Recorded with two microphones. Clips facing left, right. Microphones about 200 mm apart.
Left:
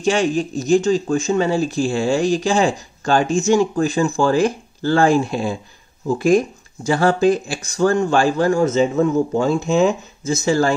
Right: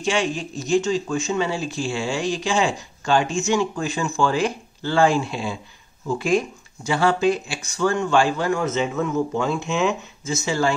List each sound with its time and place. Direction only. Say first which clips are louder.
0.0 s speech: left 6 dB; 40° left (ahead or behind)